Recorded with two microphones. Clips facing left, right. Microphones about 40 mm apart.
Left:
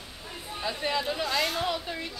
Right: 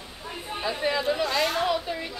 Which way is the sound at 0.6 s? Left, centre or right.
Centre.